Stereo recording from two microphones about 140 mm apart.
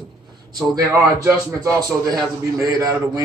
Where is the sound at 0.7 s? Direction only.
25° right (ahead or behind).